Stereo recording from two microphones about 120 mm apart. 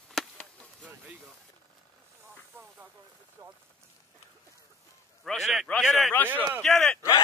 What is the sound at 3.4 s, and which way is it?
Rain on surface, 35° right (ahead or behind).